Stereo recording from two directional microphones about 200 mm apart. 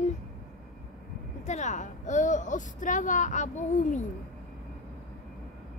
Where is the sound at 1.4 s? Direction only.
35° left (ahead or behind).